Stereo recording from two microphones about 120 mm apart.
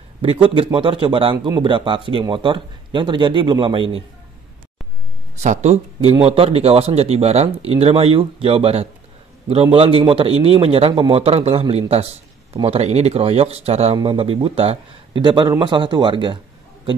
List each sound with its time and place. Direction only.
0.2 s a man's voice: 50° right (ahead or behind)
5.4 s a man's voice: 75° right (ahead or behind); by 16.3 s 40° right (ahead or behind)